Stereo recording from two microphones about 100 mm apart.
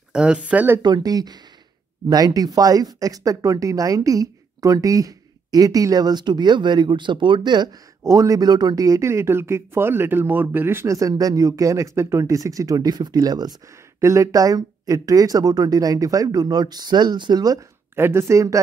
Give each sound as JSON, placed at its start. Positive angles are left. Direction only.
{"t": 0.1, "sound": "speech", "side_deg": -10}
{"t": 0.8, "sound": "speech", "side_deg": -40}
{"t": 8.0, "sound": "speech", "side_deg": -30}
{"t": 14.0, "sound": "speech", "side_deg": -30}
{"t": 17.9, "sound": "speech", "side_deg": -25}